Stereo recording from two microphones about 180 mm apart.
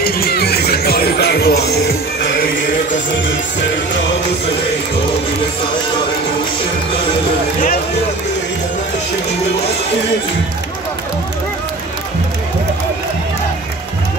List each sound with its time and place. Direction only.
0.0 s music: 60° left (ahead or behind)